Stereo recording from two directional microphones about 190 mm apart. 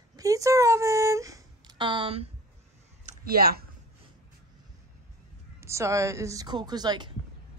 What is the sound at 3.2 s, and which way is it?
Speech, 55° right (ahead or behind).